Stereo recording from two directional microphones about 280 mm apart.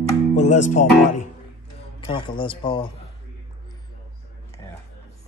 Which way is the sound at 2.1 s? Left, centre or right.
Centre.